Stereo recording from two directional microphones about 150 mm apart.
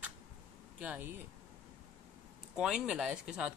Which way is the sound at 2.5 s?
5° right (ahead or behind).